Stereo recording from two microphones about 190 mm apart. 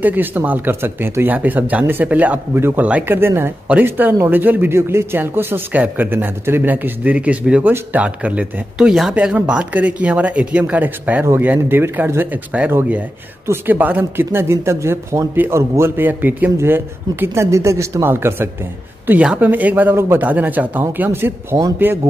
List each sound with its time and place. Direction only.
0.0 s speech: 10° right (ahead or behind)